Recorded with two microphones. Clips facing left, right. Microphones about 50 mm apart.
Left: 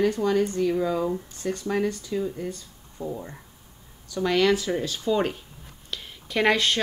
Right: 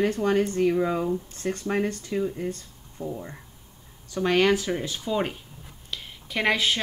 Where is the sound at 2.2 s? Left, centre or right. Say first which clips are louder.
Right 1 dB; right.